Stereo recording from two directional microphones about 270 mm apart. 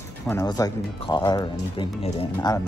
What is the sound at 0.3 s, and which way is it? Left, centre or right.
Speech, centre.